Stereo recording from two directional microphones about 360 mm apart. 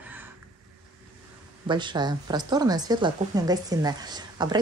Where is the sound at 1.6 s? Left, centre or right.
Centre.